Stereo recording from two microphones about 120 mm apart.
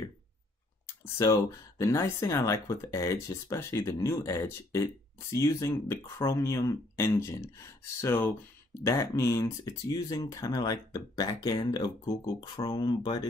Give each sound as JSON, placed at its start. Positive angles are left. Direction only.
{"t": 1.1, "sound": "speech", "side_deg": 25}